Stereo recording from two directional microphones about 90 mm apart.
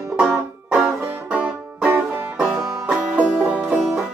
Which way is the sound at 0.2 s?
10° right (ahead or behind).